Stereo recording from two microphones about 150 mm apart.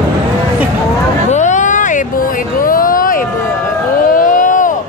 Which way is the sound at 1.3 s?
55° left (ahead or behind).